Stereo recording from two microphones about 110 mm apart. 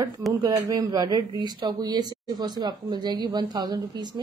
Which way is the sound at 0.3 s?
35° right (ahead or behind).